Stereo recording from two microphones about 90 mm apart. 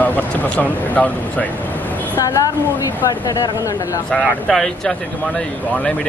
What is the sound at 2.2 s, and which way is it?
A woman's voice, 40° left (ahead or behind).